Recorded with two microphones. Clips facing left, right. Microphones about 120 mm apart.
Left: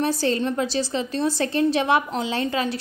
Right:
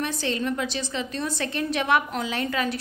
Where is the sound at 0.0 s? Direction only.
35° left (ahead or behind).